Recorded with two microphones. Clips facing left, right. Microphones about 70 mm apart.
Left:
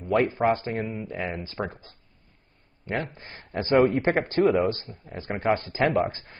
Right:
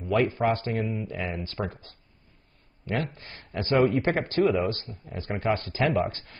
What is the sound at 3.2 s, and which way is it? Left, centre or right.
Speech, left.